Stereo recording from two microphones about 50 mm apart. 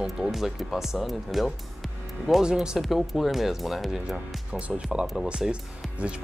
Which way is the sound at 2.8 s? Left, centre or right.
Centre.